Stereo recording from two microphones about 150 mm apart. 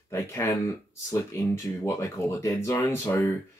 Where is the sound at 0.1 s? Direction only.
20° left (ahead or behind).